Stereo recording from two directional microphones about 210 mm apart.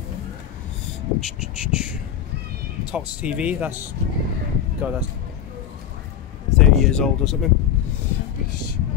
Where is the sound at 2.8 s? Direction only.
5° right (ahead or behind).